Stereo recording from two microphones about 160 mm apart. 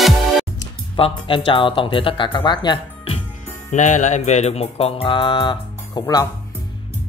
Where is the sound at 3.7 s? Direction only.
50° left (ahead or behind); by 5.5 s 30° left (ahead or behind).